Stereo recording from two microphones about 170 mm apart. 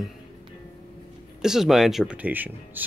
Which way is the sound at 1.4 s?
Centre (ahead or behind).